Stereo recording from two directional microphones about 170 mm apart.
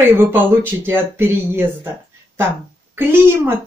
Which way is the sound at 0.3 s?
10° right (ahead or behind).